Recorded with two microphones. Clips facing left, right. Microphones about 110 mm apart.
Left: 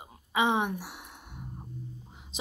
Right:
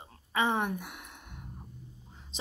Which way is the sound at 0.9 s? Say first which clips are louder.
Left 1 dB; 5° left (ahead or behind).